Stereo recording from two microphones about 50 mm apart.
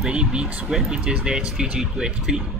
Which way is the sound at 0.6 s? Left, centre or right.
Centre.